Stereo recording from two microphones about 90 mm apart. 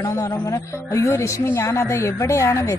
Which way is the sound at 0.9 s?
35° left (ahead or behind).